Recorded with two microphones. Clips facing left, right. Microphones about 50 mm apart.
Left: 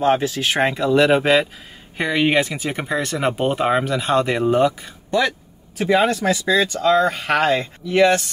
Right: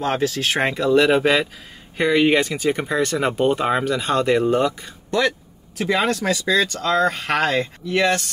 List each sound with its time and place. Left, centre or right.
0.0 s speech: centre